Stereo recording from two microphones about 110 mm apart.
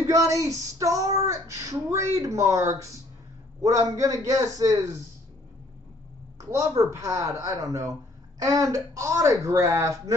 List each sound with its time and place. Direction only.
0.0 s child singing: 30° right (ahead or behind)
3.6 s a man's voice: 30° right (ahead or behind)
6.5 s child singing: 30° right (ahead or behind)